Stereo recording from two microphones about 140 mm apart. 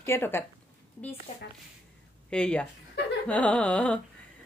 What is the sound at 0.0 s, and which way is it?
Speech, 15° left (ahead or behind).